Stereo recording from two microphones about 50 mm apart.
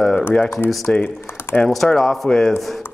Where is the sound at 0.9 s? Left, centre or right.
Left.